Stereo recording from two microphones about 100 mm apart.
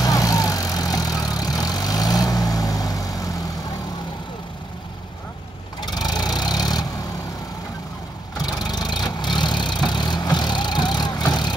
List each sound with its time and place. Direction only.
0.0 s vehicle: 35° left (ahead or behind)
5.8 s vehicle: 45° left (ahead or behind)
8.4 s vehicle: 45° left (ahead or behind)